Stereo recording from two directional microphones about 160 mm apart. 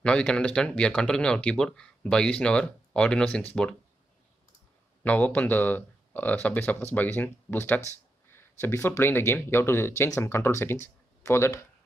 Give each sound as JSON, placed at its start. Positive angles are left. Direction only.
{"t": 0.0, "sound": "speech", "side_deg": 5}
{"t": 5.0, "sound": "speech", "side_deg": 10}